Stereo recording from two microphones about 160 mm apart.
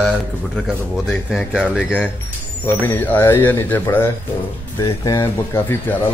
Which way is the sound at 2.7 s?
10° left (ahead or behind).